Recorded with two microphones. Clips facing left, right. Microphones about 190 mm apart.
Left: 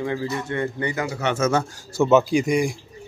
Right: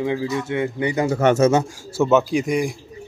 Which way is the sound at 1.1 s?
50° right (ahead or behind).